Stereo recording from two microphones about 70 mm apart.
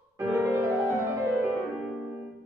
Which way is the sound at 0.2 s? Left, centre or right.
Right.